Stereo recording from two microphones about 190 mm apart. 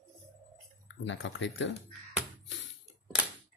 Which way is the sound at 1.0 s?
75° left (ahead or behind).